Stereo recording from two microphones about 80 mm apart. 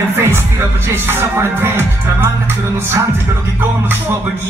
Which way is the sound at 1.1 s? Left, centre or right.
Right.